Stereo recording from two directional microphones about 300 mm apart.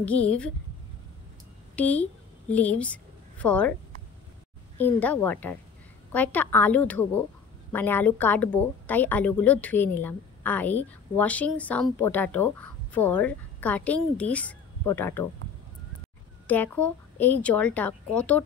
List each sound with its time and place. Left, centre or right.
1.8 s a woman's voice: centre
4.7 s a woman's voice: centre
16.4 s a woman's voice: centre